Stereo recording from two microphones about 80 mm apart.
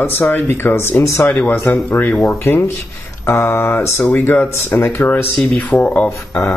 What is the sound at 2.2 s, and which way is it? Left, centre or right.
Speech, left.